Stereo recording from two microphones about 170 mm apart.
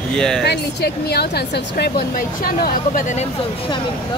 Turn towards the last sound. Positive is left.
turn(degrees=45)  # may be behind; listen again after turning